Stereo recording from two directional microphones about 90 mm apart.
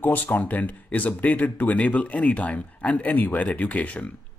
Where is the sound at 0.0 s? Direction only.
20° left (ahead or behind).